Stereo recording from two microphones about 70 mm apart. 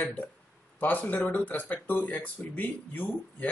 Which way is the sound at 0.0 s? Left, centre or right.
Left.